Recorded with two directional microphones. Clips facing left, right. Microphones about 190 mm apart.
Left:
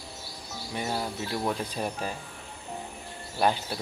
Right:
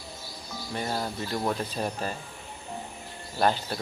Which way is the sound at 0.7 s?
10° left (ahead or behind).